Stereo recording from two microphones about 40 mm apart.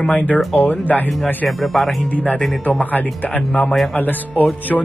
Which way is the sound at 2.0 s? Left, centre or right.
Left.